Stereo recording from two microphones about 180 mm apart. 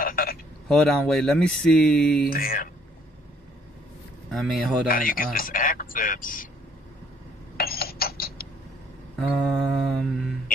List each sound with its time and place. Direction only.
0.0 s a sound: 55° left (ahead or behind)
0.7 s speech: centre (ahead or behind)
2.2 s speech: 55° left (ahead or behind)
4.3 s speech: centre (ahead or behind)
4.8 s speech: 50° left (ahead or behind)
7.5 s a sound: 60° left (ahead or behind)
9.3 s speech: 5° left (ahead or behind)
9.8 s mantra: 5° left (ahead or behind)